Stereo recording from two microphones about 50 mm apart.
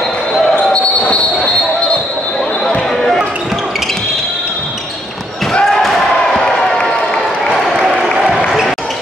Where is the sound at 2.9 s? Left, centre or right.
Centre.